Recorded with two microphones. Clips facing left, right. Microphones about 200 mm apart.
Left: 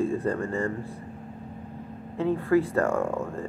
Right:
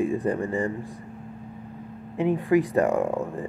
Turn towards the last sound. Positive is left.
turn(degrees=-15)  # may be behind; listen again after turning